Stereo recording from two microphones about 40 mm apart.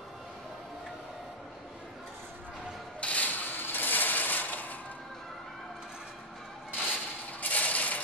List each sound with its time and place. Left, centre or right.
3.0 s ratchet: left
7.4 s coin: left